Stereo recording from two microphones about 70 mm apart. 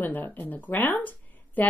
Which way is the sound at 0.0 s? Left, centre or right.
Left.